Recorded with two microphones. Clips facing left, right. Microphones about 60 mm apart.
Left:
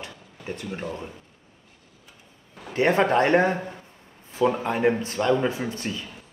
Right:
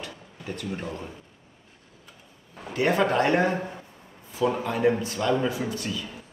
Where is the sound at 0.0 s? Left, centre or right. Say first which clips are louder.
Even; left.